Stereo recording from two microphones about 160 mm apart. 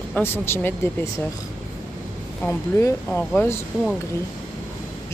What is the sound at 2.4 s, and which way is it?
Speech, 15° left (ahead or behind).